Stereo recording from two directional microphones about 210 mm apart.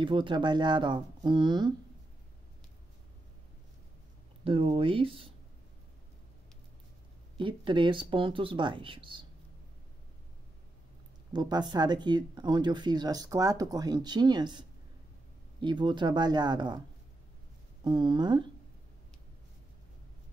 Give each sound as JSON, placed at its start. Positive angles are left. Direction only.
{"t": 0.0, "sound": "speech", "side_deg": -25}
{"t": 4.5, "sound": "speech", "side_deg": -25}
{"t": 7.3, "sound": "speech", "side_deg": -25}
{"t": 11.3, "sound": "speech", "side_deg": -20}
{"t": 17.8, "sound": "speech", "side_deg": -20}